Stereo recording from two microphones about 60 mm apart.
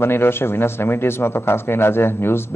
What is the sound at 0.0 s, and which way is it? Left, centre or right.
Speech, left.